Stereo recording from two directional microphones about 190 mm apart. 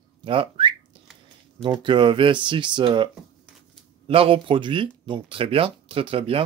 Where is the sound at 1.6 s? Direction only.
25° right (ahead or behind).